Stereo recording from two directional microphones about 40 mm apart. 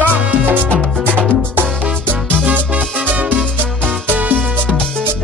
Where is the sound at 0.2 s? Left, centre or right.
Right.